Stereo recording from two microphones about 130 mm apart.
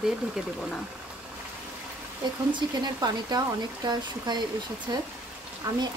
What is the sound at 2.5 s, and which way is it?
Speech, 30° right (ahead or behind).